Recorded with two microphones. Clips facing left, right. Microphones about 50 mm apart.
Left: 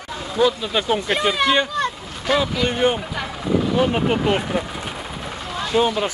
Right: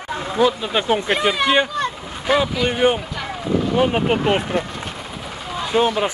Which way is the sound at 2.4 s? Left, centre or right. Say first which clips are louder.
Right 1 dB; centre.